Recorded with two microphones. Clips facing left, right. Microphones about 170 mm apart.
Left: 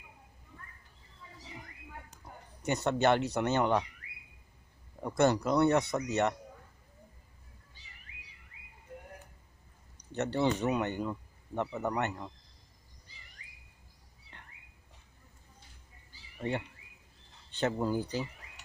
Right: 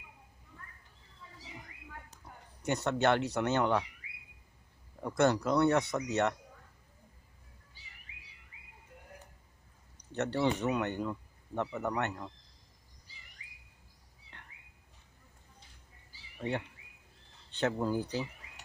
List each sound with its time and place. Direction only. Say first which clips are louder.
2.6 s speech: left 1 dB; 15° left (ahead or behind)
4.0 s a sound: even; 10° right (ahead or behind)
5.0 s speech: left 1 dB; 15° left (ahead or behind)
10.3 s speech: left 1 dB; 5° left (ahead or behind)
16.3 s speech: left 1 dB; 5° left (ahead or behind)